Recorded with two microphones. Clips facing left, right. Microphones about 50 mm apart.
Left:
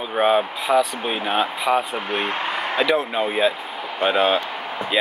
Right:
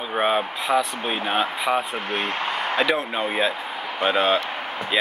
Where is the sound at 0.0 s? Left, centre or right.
Centre.